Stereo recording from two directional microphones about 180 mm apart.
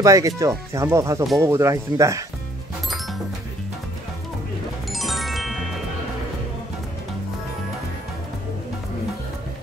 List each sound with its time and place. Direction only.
0.0 s speech: 20° right (ahead or behind)
4.9 s music: centre (ahead or behind)